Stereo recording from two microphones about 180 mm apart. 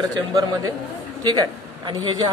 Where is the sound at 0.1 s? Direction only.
20° right (ahead or behind).